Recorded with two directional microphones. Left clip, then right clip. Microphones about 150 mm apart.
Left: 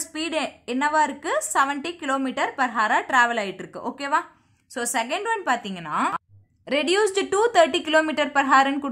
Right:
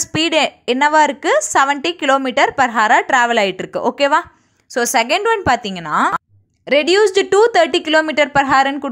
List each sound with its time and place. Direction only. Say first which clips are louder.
0.0 s a woman's voice: right 12 dB; 40° right (ahead or behind)